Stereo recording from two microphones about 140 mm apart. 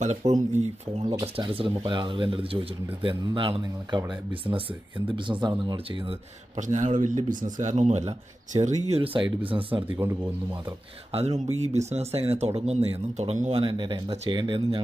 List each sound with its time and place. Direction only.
0.0 s speech: 55° right (ahead or behind)
1.2 s speech: 40° right (ahead or behind)
4.4 s speech: 25° right (ahead or behind)
6.0 s speech: 45° right (ahead or behind)
6.8 s speech: 60° right (ahead or behind); by 9.8 s 40° right (ahead or behind)
11.1 s speech: 50° right (ahead or behind)
13.6 s speech: 35° right (ahead or behind)